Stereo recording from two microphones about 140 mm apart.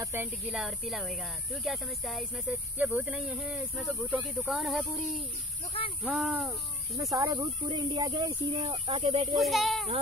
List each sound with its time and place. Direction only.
0.0 s speech: 15° right (ahead or behind)
7.0 s speech: 25° right (ahead or behind); by 9.3 s 45° right (ahead or behind)
9.4 s speech: centre (ahead or behind)